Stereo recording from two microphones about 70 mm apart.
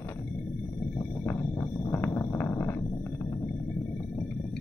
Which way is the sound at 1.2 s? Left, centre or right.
Left.